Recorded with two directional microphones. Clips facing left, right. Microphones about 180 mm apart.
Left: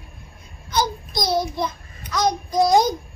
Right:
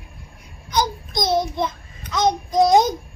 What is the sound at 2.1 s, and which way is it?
Speech, 20° right (ahead or behind).